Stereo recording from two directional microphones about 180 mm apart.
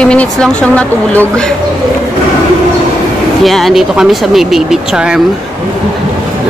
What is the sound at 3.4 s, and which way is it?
Speech, centre (ahead or behind).